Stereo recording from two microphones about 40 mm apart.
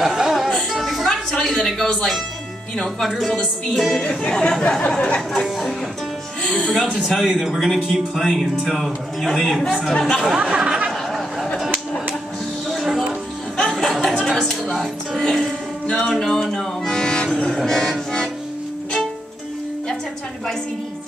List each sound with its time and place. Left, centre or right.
0.0 s music: centre
1.3 s speech: centre
3.3 s speech: centre
4.8 s speech: left
6.4 s speech: centre
10.3 s speech: right
13.6 s music: centre
14.2 s a sound: centre
14.7 s speech: centre
15.9 s music: centre
17.6 s speech: centre